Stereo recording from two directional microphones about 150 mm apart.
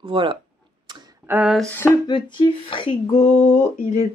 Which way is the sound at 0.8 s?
30° right (ahead or behind).